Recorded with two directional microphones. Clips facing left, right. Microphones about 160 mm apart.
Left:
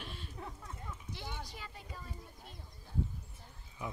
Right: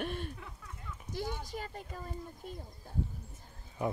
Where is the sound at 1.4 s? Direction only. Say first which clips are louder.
Right 6 dB; 45° right (ahead or behind).